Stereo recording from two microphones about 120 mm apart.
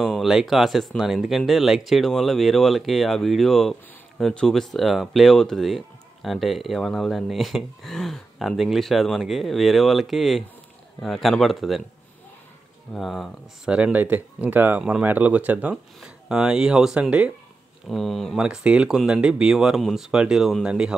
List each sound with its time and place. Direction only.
0.0 s speech: centre (ahead or behind)
12.9 s speech: centre (ahead or behind)
13.7 s speech: 10° right (ahead or behind)
17.8 s speech: centre (ahead or behind)